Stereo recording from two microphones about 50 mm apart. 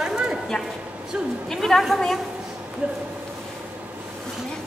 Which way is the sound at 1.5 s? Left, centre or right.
Centre.